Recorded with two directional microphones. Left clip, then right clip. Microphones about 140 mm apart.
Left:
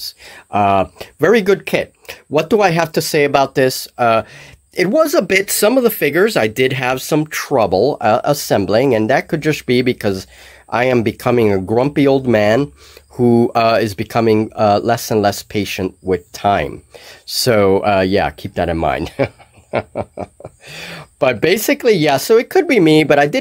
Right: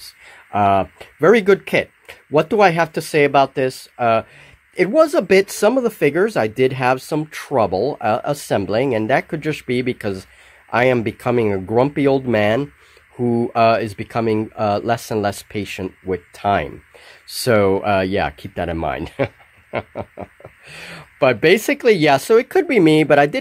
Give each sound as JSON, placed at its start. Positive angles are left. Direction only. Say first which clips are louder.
{"t": 0.0, "sound": "speech", "louder": "left 9 dB", "side_deg": 0}